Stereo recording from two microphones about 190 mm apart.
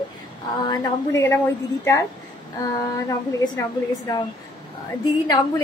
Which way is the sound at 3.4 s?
20° left (ahead or behind).